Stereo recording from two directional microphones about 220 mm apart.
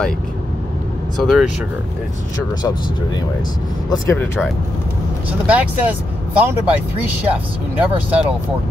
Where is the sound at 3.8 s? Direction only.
10° left (ahead or behind).